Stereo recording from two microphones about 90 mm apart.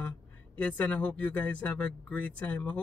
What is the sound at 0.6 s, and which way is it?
Speech, 15° left (ahead or behind).